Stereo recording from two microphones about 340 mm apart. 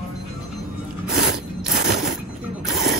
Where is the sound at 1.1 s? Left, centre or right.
Right.